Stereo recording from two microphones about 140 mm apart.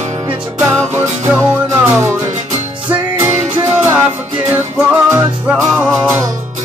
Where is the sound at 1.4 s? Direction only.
15° right (ahead or behind).